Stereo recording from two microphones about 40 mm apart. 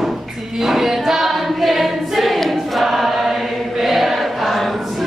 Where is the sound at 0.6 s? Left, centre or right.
Centre.